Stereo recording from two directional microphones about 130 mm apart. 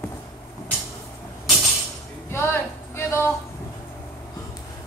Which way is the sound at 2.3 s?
20° left (ahead or behind).